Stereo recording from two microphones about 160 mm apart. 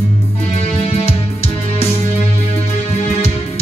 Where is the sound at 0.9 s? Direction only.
40° left (ahead or behind).